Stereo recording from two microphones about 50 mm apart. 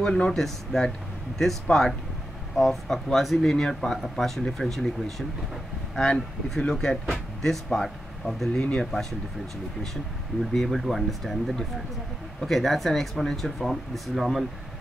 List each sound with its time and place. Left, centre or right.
0.0 s speech: centre
5.9 s speech: centre
10.5 s speech: centre